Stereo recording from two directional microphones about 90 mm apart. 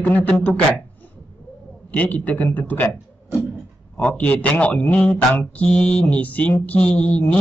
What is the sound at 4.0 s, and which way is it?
Mantra, 15° left (ahead or behind).